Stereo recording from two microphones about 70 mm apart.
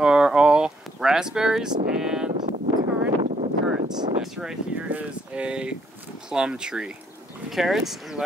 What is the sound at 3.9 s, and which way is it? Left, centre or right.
Speech, right.